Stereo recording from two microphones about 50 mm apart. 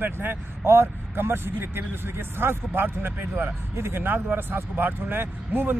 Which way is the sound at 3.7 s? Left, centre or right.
Right.